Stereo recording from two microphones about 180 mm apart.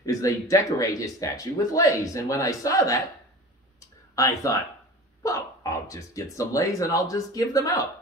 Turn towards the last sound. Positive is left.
turn(degrees=20)  # may be behind; listen again after turning